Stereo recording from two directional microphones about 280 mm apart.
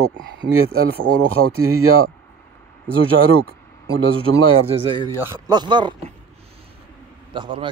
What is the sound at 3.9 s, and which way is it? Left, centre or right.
Speech, right.